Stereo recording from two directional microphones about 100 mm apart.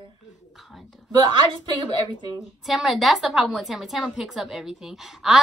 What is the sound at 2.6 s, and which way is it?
A woman's voice, 5° right (ahead or behind).